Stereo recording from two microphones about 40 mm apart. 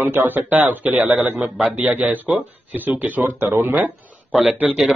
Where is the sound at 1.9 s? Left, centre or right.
Right.